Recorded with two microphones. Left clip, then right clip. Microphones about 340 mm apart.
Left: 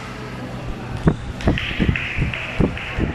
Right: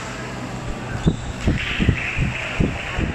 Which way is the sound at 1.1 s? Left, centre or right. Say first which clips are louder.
Left 4 dB; left.